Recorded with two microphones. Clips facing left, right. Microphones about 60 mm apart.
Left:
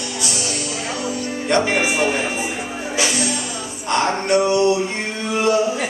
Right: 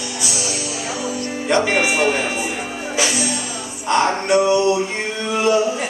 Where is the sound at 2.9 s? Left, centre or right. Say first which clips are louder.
Even; centre.